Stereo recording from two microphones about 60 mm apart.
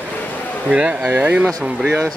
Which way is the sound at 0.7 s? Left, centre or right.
Centre.